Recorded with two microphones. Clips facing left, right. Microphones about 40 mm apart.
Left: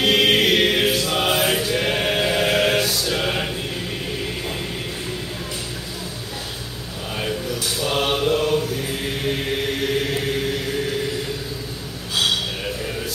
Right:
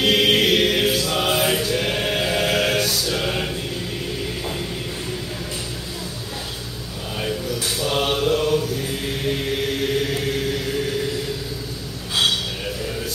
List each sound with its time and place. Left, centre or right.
0.0 s chant: centre
3.1 s mantra: centre
7.8 s mantra: centre